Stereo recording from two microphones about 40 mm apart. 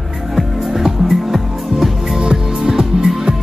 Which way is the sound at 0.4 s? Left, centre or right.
Centre.